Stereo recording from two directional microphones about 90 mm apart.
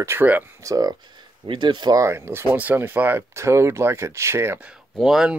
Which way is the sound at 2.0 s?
30° right (ahead or behind).